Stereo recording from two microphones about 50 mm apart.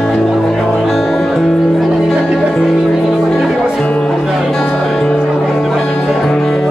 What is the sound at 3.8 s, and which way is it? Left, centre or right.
Music, left.